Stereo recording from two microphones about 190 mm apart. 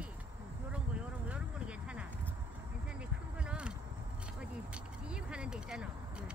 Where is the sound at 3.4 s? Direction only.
5° right (ahead or behind).